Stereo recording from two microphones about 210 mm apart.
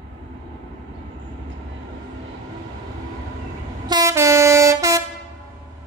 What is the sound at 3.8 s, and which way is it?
Train, 15° right (ahead or behind).